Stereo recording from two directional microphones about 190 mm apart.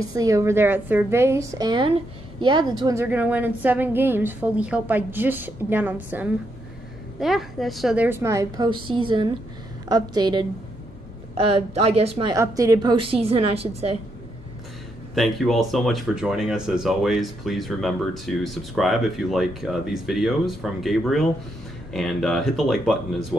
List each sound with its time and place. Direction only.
0.0 s a woman's voice: 20° right (ahead or behind)
12.4 s a woman's voice: 15° right (ahead or behind)
15.1 s speech: centre (ahead or behind)